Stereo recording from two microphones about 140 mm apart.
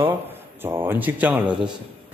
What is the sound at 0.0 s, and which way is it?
A man's voice, 15° right (ahead or behind).